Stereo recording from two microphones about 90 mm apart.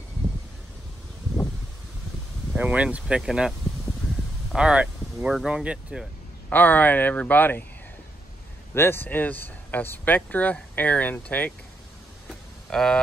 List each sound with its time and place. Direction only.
2.5 s speech: 15° right (ahead or behind)
4.6 s speech: 10° right (ahead or behind)
6.5 s speech: 20° left (ahead or behind)
8.7 s speech: 25° left (ahead or behind)
12.6 s speech: 10° left (ahead or behind)